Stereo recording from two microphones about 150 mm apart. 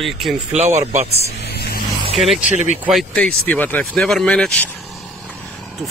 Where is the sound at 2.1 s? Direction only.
Centre (ahead or behind).